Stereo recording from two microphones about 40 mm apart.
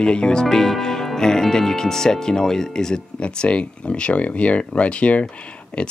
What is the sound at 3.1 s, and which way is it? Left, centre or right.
Speech, left.